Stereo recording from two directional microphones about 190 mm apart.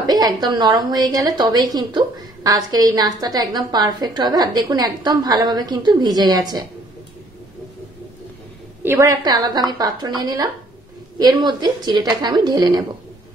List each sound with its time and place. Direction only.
0.0 s a woman's voice: 20° right (ahead or behind)
8.8 s a woman's voice: 15° right (ahead or behind)